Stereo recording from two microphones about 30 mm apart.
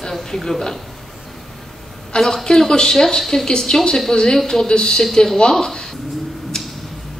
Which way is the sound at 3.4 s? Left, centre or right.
Left.